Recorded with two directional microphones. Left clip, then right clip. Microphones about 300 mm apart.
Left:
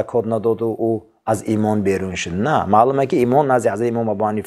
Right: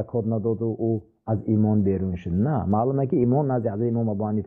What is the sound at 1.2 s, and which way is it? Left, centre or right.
Speech, centre.